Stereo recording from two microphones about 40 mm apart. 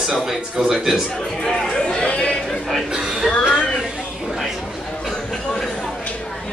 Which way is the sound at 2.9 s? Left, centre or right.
Centre.